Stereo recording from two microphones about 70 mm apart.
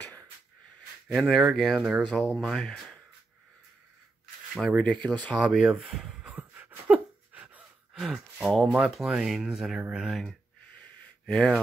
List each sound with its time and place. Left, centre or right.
0.0 s wheeze: left
1.0 s speech: centre
2.0 s speech: centre
4.7 s speech: centre
5.5 s speech: centre
6.3 s a sound: right
7.9 s speech: centre
10.0 s speech: centre
10.8 s a sound: centre